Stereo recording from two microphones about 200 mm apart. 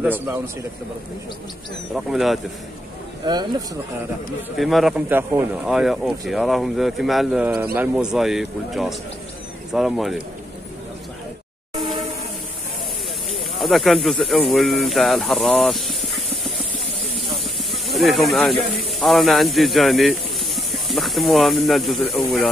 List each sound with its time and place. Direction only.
0.0 s a man's voice: 10° right (ahead or behind)
2.0 s speech: centre (ahead or behind)
3.3 s speech: 20° right (ahead or behind)
4.6 s speech: centre (ahead or behind)
11.8 s train: centre (ahead or behind)
13.3 s speech: centre (ahead or behind)